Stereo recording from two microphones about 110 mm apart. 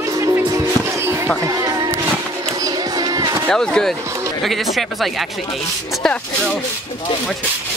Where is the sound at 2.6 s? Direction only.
35° right (ahead or behind).